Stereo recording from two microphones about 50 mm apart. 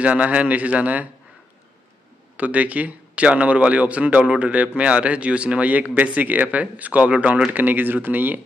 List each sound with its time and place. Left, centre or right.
0.0 s speech: right
2.3 s speech: right
7.5 s speech: right